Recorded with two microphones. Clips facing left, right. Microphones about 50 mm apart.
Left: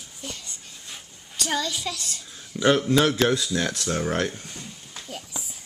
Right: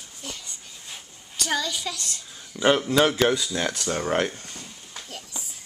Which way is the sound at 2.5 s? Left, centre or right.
Right.